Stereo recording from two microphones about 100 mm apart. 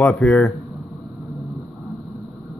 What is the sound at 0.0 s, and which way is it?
Speech, 15° left (ahead or behind).